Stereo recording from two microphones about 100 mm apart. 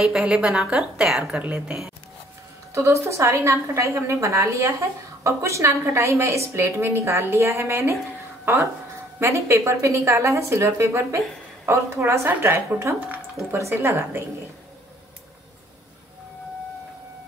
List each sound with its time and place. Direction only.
0.0 s a woman's voice: 5° right (ahead or behind)
2.7 s a woman's voice: 30° right (ahead or behind)
9.2 s a woman's voice: 30° right (ahead or behind)